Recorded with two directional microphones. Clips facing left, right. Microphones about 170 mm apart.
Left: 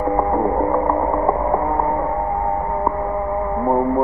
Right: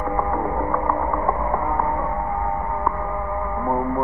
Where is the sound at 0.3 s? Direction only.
30° left (ahead or behind).